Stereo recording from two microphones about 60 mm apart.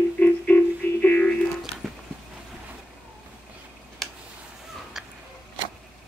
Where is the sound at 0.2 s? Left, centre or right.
Left.